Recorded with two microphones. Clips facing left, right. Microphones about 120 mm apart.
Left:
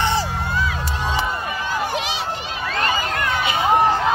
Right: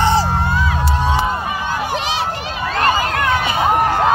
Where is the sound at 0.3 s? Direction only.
55° right (ahead or behind).